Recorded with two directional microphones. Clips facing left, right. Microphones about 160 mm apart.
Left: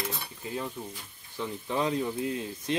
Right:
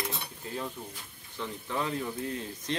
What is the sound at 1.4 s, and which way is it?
Speech, 15° left (ahead or behind).